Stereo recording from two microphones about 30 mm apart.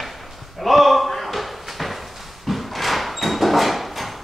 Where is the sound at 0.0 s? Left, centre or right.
Centre.